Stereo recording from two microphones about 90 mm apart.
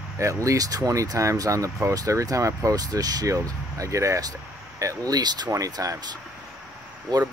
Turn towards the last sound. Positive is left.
turn(degrees=-45)  # may be behind; listen again after turning